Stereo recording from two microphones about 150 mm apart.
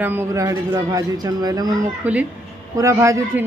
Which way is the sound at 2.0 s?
10° right (ahead or behind).